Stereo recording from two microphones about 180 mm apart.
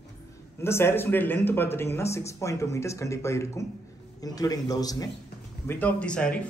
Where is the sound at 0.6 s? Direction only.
15° left (ahead or behind).